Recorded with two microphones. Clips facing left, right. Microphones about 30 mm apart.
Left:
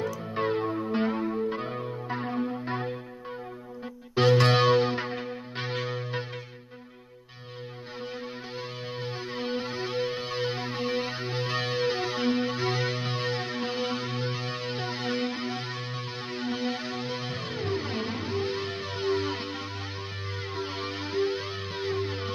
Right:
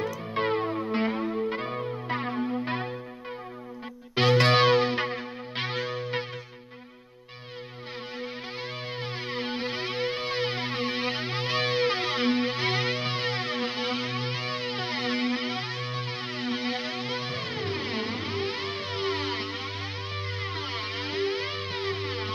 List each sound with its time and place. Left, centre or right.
0.3 s music: right
0.6 s music: centre
1.5 s music: right
2.3 s music: centre
2.6 s music: right
4.1 s music: right
5.8 s music: centre
9.0 s music: right
16.3 s music: right